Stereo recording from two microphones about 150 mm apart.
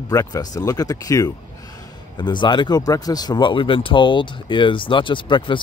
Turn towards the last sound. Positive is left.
turn(degrees=30)  # may be behind; listen again after turning